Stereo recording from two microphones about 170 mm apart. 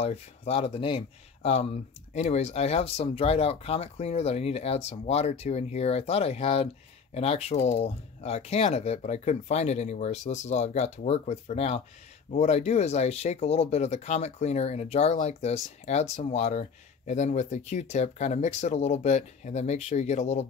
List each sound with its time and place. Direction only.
0.0 s speech: 35° left (ahead or behind)